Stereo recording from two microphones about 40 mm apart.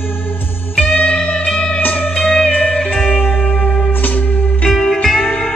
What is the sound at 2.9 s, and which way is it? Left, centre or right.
Music, centre.